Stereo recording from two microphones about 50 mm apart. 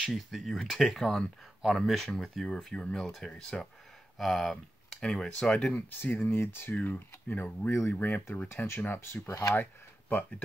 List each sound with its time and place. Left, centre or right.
0.0 s speech: centre
2.4 s speech: centre
5.8 s speech: left
6.2 s speech: left
6.7 s speech: left
9.0 s speech: left
9.6 s a sound: left